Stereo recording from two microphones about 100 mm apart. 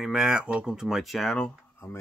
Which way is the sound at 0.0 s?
5° right (ahead or behind).